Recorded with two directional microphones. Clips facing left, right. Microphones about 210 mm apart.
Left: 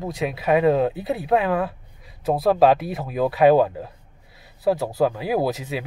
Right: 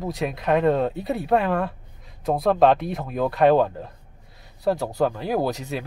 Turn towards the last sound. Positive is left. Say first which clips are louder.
# left 1 dB
turn(degrees=5)  # may be behind; listen again after turning